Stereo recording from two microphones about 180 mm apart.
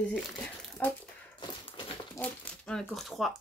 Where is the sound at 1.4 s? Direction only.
30° left (ahead or behind).